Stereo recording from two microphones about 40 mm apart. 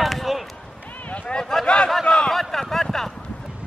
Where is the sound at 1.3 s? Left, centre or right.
Left.